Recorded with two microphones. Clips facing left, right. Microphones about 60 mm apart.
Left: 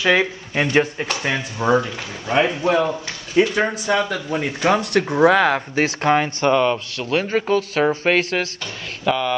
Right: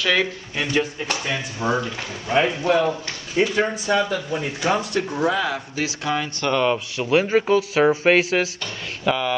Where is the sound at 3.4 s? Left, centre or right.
Left.